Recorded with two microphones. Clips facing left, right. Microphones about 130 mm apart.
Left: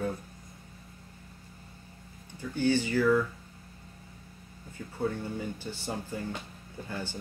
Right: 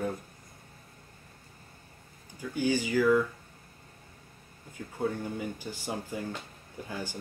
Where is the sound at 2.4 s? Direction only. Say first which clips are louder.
Left 2 dB; 10° right (ahead or behind).